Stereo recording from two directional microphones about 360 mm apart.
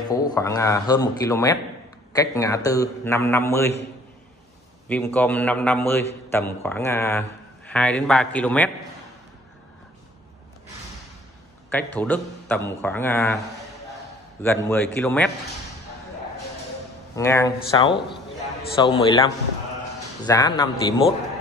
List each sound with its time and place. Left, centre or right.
0.1 s a man's voice: centre
4.8 s speech: centre
11.7 s speech: centre
14.4 s speech: centre
17.1 s a man's voice: centre
18.8 s a man's voice: centre